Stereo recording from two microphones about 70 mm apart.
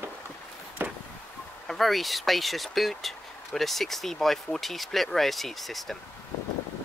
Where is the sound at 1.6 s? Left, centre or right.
Centre.